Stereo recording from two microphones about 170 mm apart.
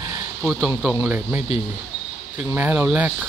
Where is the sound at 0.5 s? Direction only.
Centre (ahead or behind).